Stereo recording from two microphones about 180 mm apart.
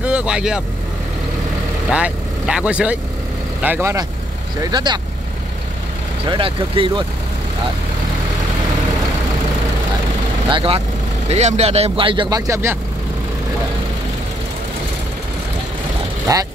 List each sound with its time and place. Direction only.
0.0 s speech: 5° right (ahead or behind)
1.9 s speech: 5° right (ahead or behind)
4.6 s speech: 25° right (ahead or behind)
6.2 s speech: 30° right (ahead or behind)
10.5 s speech: 30° right (ahead or behind)
16.3 s speech: 20° right (ahead or behind)